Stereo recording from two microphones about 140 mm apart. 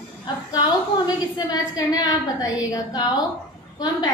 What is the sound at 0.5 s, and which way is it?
A woman's voice, 25° left (ahead or behind).